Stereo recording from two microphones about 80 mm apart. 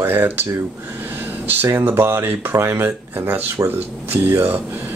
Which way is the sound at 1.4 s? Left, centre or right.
Right.